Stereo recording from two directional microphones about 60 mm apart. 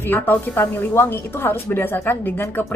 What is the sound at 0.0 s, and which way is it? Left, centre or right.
A woman's voice, left.